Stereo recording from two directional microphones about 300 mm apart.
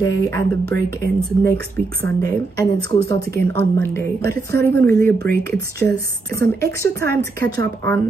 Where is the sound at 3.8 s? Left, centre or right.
Centre.